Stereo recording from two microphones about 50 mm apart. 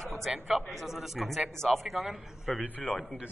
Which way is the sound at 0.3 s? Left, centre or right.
Centre.